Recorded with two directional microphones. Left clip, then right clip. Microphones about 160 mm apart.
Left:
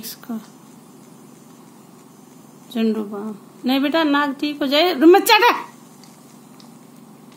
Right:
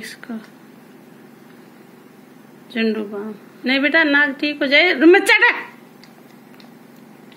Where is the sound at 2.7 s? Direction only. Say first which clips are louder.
Right 1 dB; 25° left (ahead or behind).